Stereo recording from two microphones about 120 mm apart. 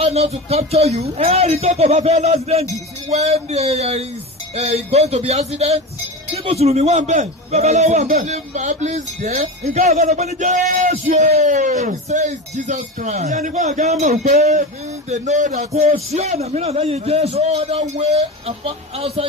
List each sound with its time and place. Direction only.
0.0 s a man's voice: 60° right (ahead or behind)